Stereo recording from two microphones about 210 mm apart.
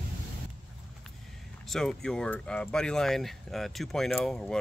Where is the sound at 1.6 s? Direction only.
Centre (ahead or behind).